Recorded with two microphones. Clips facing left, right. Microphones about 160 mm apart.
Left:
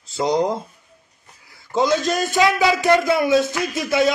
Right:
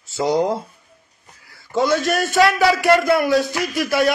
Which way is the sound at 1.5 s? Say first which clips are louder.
Even; 20° left (ahead or behind).